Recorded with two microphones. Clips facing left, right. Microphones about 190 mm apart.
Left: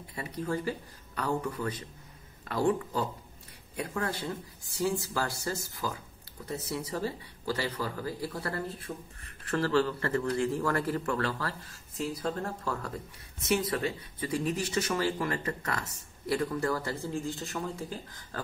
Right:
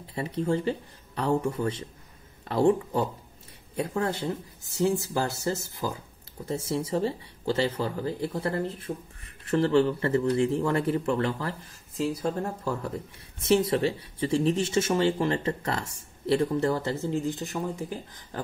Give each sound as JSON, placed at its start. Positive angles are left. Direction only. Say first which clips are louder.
{"t": 0.0, "sound": "speech", "louder": "right 7 dB", "side_deg": -30}